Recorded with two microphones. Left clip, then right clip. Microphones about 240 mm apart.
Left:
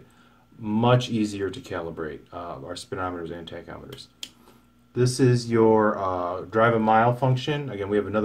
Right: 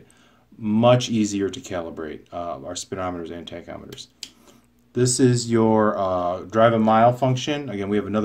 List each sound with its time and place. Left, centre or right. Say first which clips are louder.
0.7 s speech: right 5 dB; right